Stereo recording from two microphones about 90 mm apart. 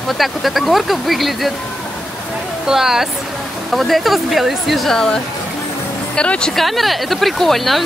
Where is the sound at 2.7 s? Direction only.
5° right (ahead or behind).